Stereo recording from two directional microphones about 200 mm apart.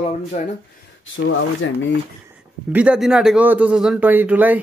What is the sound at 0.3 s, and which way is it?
Speech, 40° left (ahead or behind).